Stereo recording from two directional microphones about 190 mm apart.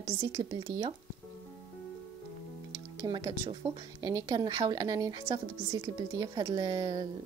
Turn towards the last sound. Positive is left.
turn(degrees=-20)  # may be behind; listen again after turning